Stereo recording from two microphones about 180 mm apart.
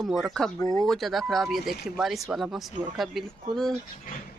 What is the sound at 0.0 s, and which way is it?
Speech, centre (ahead or behind).